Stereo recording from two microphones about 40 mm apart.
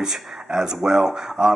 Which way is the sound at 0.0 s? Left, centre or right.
Centre.